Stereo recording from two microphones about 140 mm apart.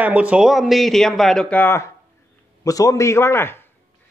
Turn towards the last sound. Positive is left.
turn(degrees=15)  # may be behind; listen again after turning